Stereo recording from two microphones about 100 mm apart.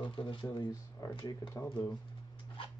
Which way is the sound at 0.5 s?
40° left (ahead or behind).